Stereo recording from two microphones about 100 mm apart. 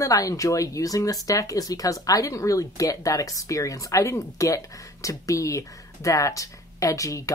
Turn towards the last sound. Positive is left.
turn(degrees=35)  # may be behind; listen again after turning